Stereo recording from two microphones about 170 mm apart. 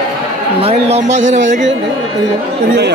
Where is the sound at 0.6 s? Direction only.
40° right (ahead or behind).